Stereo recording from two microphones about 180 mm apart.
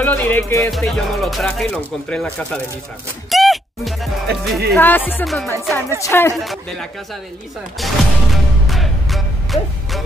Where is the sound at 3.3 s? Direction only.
Centre (ahead or behind).